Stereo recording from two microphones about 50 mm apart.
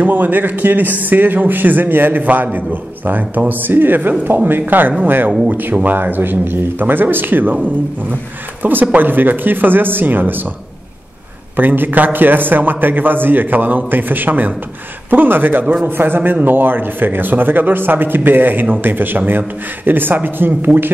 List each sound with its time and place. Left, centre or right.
0.0 s a man's voice: right
8.9 s a man's voice: right
11.5 s a man's voice: right